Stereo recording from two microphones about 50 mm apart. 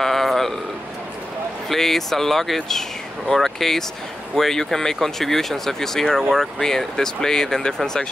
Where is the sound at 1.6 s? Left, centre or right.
Centre.